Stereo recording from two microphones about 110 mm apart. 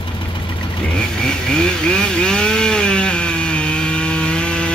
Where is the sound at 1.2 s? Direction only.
10° left (ahead or behind).